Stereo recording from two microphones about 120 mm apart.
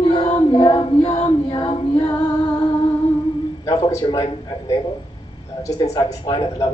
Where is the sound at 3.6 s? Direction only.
30° left (ahead or behind).